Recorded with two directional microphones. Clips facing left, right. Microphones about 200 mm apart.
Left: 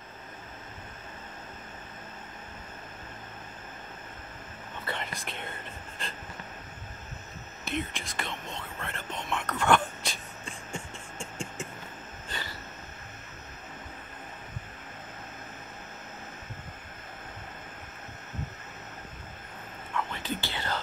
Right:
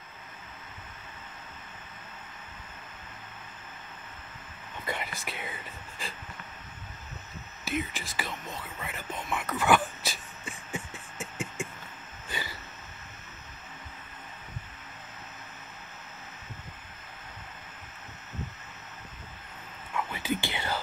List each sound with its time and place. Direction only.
4.8 s whispering: 10° right (ahead or behind)
7.6 s whispering: centre (ahead or behind)
12.3 s a sound: 10° right (ahead or behind)
20.1 s whispering: 10° right (ahead or behind)